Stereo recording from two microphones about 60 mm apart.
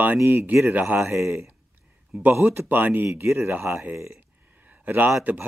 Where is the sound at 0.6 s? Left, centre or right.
Right.